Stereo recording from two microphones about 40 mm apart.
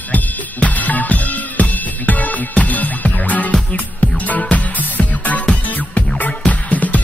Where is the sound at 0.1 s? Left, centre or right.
Left.